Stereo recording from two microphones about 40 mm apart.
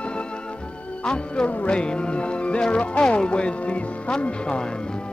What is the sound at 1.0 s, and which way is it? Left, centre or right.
Speech, left.